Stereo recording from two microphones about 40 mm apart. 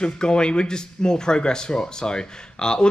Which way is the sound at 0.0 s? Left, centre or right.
Left.